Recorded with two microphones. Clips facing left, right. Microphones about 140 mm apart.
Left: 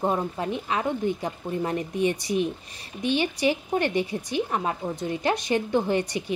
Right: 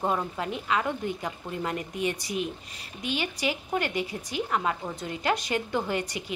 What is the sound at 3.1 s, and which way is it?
A woman's voice, 25° left (ahead or behind).